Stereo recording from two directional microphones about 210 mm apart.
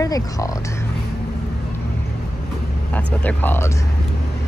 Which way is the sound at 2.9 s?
10° left (ahead or behind).